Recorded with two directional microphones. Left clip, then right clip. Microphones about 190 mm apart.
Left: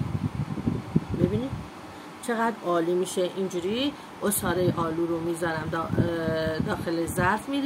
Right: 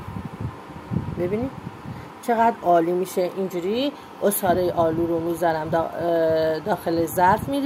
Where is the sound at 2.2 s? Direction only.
15° right (ahead or behind).